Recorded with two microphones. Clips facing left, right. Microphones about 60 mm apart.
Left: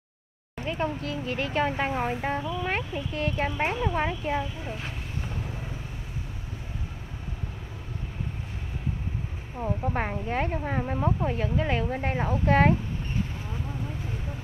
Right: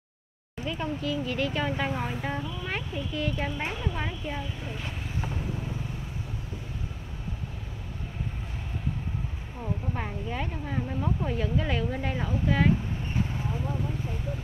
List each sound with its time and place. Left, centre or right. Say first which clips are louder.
0.7 s speech: left 1 dB; left
9.9 s speech: left 5 dB; left
12.4 s speech: left 4 dB; left